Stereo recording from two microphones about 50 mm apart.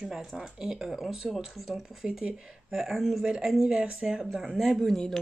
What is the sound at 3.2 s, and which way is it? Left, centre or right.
Speech, centre.